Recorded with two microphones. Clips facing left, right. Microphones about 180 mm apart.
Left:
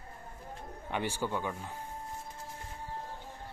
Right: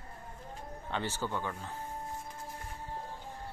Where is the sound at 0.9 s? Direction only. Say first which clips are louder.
Left 2 dB; 15° left (ahead or behind).